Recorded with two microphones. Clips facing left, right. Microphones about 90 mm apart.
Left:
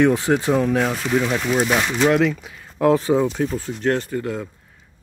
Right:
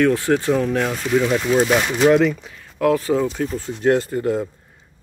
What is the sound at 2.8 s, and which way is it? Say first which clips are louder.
Speech: left 1 dB; 25° left (ahead or behind).